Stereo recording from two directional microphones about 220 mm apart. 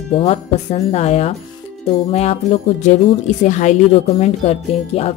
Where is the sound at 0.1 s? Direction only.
30° left (ahead or behind).